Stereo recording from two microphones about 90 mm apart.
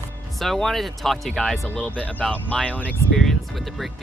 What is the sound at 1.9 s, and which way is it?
Speech, 20° left (ahead or behind).